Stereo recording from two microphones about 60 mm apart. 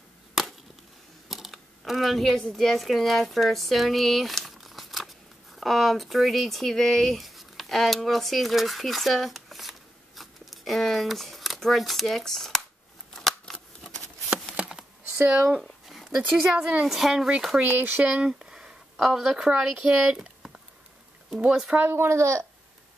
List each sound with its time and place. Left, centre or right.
0.3 s chop: centre
1.3 s speech: centre
13.1 s shuffling cards: centre
15.9 s a sound: centre
16.2 s speech: right
16.8 s speech: centre
17.6 s speech: right
18.1 s speech: centre
20.0 s a sound: centre
21.4 s speech: centre
21.8 s speech: right